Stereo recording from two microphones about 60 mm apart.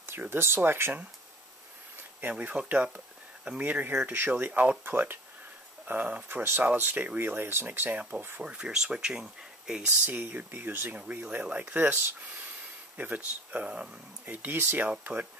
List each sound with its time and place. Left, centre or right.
0.2 s speech: right
2.2 s speech: right
4.5 s speech: right
4.8 s speech: right
8.4 s speech: right
8.7 s speech: centre
10.0 s speech: right
11.0 s speech: centre
14.2 s speech: right